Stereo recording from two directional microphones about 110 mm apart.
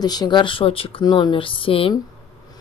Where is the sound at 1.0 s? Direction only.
45° left (ahead or behind).